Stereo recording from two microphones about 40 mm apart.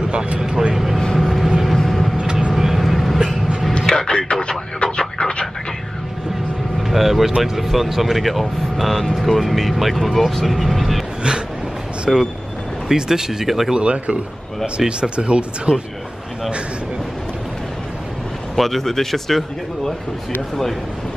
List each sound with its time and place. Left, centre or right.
0.1 s speech: right
0.4 s speech: centre
0.7 s vehicle: centre
3.8 s a sound: centre
4.1 s speech: left
4.9 s radio: centre
6.8 s speech: centre
12.1 s speech: centre
12.8 s speech: centre
13.7 s speech: right
18.6 s speech: centre